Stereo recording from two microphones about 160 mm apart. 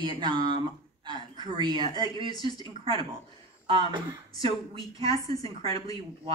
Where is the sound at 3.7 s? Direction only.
30° right (ahead or behind).